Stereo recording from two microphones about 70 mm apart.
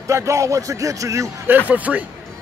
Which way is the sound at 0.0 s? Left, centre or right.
Right.